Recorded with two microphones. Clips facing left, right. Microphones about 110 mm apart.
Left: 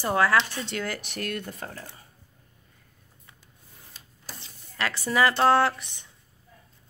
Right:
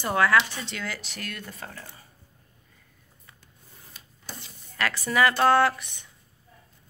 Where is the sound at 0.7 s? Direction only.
45° left (ahead or behind).